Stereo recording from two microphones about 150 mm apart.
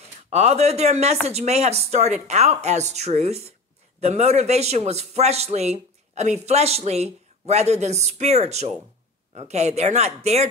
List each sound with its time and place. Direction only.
0.3 s a man's voice: 45° right (ahead or behind)